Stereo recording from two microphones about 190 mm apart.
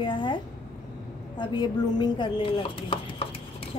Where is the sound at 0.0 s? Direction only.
25° left (ahead or behind).